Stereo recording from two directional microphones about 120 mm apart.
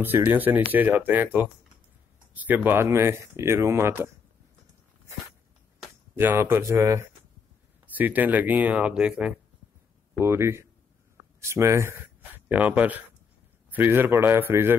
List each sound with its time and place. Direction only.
0.3 s speech: 15° right (ahead or behind)
6.1 s speech: 15° right (ahead or behind)
10.1 s speech: 20° right (ahead or behind)